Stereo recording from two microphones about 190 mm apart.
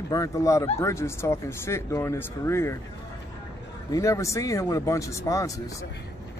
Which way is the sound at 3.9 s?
15° left (ahead or behind).